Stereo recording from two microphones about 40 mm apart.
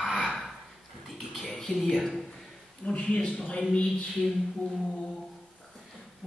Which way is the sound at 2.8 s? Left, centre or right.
Left.